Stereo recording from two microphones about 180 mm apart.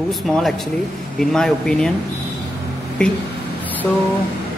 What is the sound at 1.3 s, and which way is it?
Speech, 5° left (ahead or behind).